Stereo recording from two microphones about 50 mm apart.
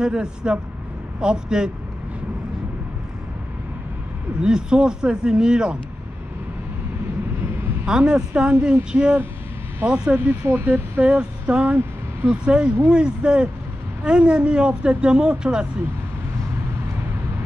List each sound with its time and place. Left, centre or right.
0.0 s speech: centre
4.4 s speech: centre
7.8 s speech: centre
10.4 s speech: right
11.0 s a sound: right
12.3 s speech: centre